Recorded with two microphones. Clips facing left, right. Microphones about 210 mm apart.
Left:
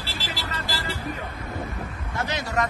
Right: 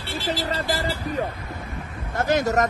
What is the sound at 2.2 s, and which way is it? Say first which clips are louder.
Speech: right 7 dB; 50° right (ahead or behind).